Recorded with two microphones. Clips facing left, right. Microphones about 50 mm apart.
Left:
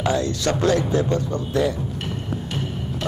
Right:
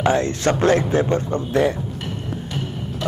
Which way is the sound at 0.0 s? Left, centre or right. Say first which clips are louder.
Right 3 dB; right.